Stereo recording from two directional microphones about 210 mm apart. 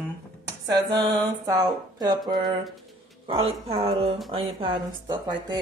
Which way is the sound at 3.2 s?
25° right (ahead or behind).